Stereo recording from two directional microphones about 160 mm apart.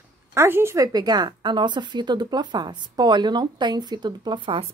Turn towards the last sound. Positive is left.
turn(degrees=-30)  # may be behind; listen again after turning